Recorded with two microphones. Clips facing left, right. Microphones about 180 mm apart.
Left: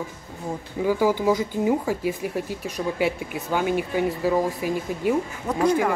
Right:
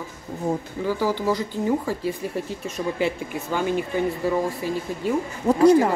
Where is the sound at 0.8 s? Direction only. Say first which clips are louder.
Left 3 dB; 15° left (ahead or behind).